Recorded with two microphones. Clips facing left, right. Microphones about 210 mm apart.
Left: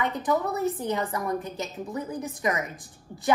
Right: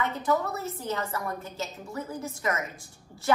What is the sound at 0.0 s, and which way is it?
A woman's voice, 15° left (ahead or behind).